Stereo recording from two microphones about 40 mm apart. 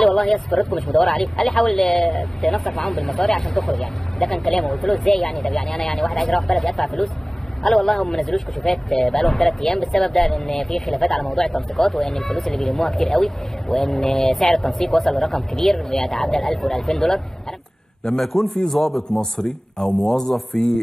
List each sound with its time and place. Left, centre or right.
0.0 s speech: centre
18.2 s a man's voice: centre
19.3 s speech: left